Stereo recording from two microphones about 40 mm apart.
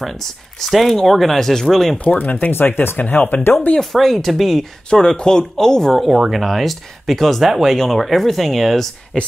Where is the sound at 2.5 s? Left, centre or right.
Left.